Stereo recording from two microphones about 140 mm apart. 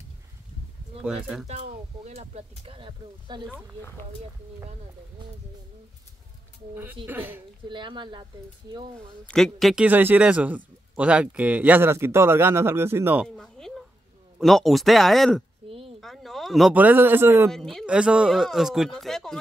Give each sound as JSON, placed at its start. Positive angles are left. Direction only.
{"t": 1.0, "sound": "speech", "side_deg": -5}
{"t": 1.5, "sound": "speech", "side_deg": -50}
{"t": 6.7, "sound": "speech", "side_deg": -15}
{"t": 7.6, "sound": "speech", "side_deg": -35}
{"t": 9.2, "sound": "speech", "side_deg": 5}
{"t": 9.8, "sound": "speech", "side_deg": -10}
{"t": 13.4, "sound": "a sound", "side_deg": 5}
{"t": 14.4, "sound": "speech", "side_deg": 0}
{"t": 16.0, "sound": "a sound", "side_deg": 0}
{"t": 16.7, "sound": "speech", "side_deg": -10}
{"t": 17.5, "sound": "speech", "side_deg": 5}
{"t": 17.8, "sound": "speech", "side_deg": -10}